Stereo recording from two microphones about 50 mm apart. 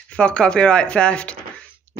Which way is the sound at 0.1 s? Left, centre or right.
Left.